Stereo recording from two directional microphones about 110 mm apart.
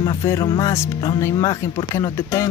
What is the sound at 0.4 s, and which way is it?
Speech, 40° left (ahead or behind).